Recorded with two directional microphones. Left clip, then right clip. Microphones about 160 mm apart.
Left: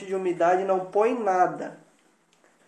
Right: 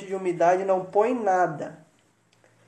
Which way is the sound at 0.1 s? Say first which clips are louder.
Right 1 dB; 15° right (ahead or behind).